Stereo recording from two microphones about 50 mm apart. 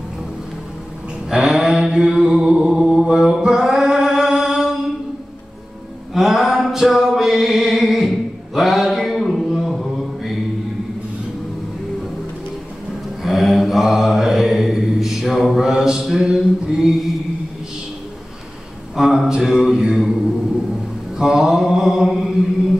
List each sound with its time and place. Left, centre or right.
1.3 s mantra: centre
2.7 s mantra: centre
6.1 s music: centre
8.5 s mantra: centre
13.2 s mantra: centre
18.9 s a sound: centre
19.4 s mantra: centre
21.2 s mantra: centre